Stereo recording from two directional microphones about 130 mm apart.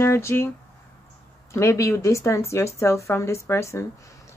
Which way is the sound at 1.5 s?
20° left (ahead or behind).